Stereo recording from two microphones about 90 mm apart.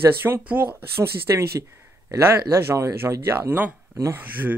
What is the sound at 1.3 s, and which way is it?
Speech, 35° right (ahead or behind).